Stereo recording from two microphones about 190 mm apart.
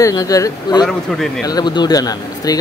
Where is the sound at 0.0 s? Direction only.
20° left (ahead or behind).